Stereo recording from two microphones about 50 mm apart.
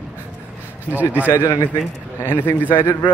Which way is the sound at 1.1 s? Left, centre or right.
Right.